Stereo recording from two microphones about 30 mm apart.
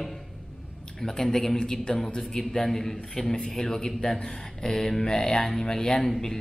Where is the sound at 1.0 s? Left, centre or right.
Centre.